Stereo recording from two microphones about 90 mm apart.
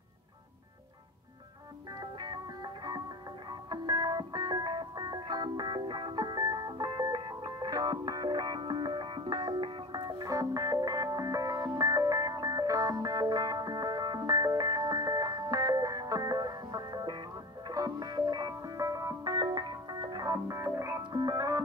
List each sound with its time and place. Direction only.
2.0 s music: 50° right (ahead or behind)
10.0 s music: 45° right (ahead or behind)
20.4 s music: 30° right (ahead or behind)
21.1 s music: 50° right (ahead or behind)